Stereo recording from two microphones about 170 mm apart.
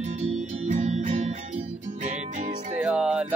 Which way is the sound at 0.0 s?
45° right (ahead or behind).